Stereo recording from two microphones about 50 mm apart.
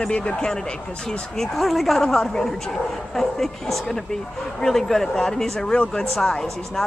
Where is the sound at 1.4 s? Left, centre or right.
Centre.